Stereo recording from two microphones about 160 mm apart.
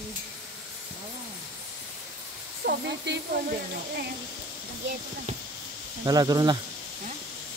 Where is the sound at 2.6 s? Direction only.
70° right (ahead or behind).